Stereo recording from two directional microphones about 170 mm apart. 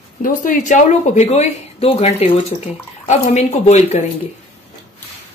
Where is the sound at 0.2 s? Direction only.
55° left (ahead or behind).